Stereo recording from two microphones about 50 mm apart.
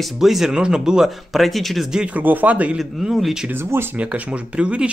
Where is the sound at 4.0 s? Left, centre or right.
Right.